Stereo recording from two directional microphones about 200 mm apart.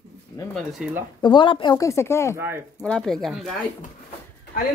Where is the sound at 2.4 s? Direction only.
10° right (ahead or behind).